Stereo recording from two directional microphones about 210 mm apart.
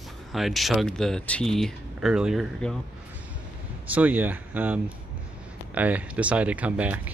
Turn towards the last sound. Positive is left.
turn(degrees=-5)  # may be behind; listen again after turning